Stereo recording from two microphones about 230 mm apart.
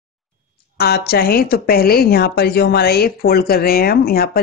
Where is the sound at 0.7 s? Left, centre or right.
Left.